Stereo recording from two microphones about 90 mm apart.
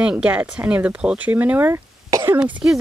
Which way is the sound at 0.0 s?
10° right (ahead or behind).